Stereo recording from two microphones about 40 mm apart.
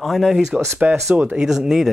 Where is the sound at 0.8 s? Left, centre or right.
Right.